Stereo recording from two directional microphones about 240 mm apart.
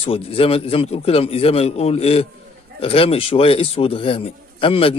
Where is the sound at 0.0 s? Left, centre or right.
Left.